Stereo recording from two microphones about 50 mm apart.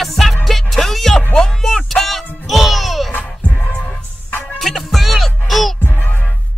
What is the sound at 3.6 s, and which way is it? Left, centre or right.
Music, centre.